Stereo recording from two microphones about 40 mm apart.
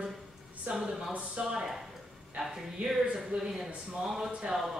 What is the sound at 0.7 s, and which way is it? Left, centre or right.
Speech, centre.